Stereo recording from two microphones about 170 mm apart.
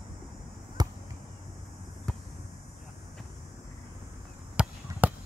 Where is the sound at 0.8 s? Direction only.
25° right (ahead or behind).